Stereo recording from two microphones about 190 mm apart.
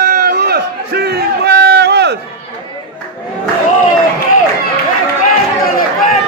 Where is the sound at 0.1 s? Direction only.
55° right (ahead or behind).